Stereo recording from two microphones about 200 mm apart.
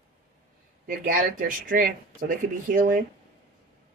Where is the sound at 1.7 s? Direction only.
45° right (ahead or behind).